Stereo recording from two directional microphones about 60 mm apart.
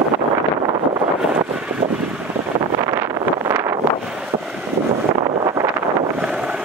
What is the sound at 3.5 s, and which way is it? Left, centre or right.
Wind noise, right.